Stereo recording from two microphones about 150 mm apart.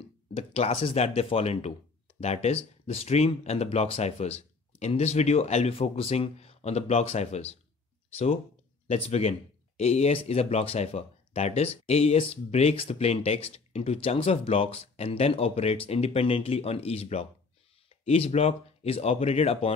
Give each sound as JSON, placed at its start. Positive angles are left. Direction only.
{"t": 0.3, "sound": "speech", "side_deg": 45}
{"t": 8.8, "sound": "speech", "side_deg": 45}